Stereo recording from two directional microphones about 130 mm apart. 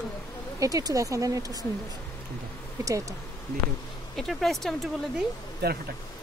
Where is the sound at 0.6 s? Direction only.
25° right (ahead or behind).